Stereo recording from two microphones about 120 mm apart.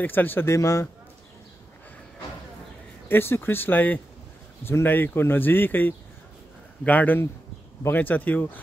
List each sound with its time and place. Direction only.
0.0 s speech: 15° left (ahead or behind)
3.1 s speech: 20° left (ahead or behind)